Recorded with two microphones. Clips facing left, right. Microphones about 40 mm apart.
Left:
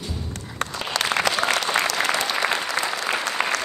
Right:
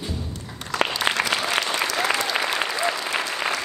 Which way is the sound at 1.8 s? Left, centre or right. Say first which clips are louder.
Even; left.